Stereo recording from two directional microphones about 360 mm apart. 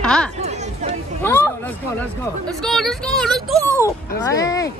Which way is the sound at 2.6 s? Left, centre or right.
Centre.